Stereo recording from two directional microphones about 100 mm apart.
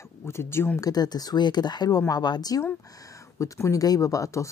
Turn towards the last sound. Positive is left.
turn(degrees=30)  # may be behind; listen again after turning